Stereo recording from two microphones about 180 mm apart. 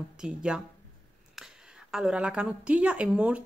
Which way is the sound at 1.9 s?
5° right (ahead or behind).